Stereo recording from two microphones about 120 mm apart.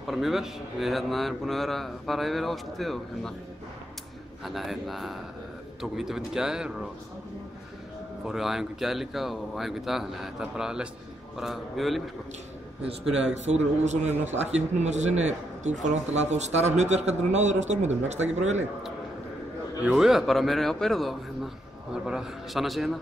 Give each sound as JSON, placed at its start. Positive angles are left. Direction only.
{"t": 0.0, "sound": "speech", "side_deg": 0}
{"t": 4.5, "sound": "speech", "side_deg": 0}
{"t": 8.3, "sound": "speech", "side_deg": -5}
{"t": 13.5, "sound": "speech", "side_deg": -70}
{"t": 19.9, "sound": "speech", "side_deg": -5}